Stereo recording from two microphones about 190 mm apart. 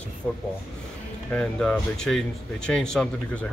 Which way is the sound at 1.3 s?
5° left (ahead or behind).